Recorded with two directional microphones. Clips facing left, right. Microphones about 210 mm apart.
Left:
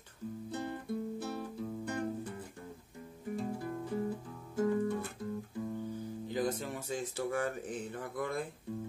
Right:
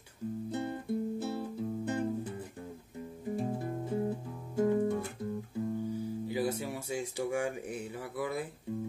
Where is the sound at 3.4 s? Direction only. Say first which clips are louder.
Right 2 dB; 25° right (ahead or behind).